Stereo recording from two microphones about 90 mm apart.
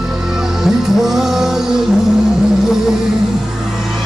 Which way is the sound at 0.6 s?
5° right (ahead or behind).